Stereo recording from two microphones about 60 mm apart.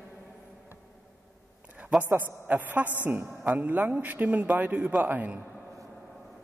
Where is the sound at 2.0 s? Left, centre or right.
Right.